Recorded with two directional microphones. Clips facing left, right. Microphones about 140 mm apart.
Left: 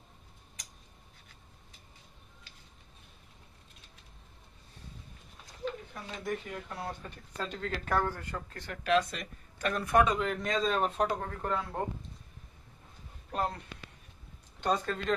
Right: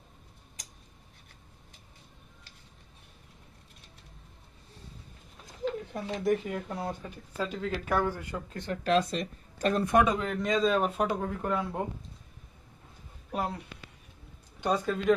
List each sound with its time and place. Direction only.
5.7 s a sound: 90° right
6.9 s speech: 10° right (ahead or behind)
8.8 s speech: 30° right (ahead or behind)
9.8 s speech: 20° right (ahead or behind)
10.1 s speech: centre (ahead or behind)
13.3 s speech: 10° right (ahead or behind)
14.6 s speech: 10° right (ahead or behind)